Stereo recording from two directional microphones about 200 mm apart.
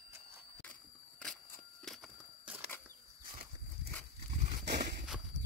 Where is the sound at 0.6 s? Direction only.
5° left (ahead or behind).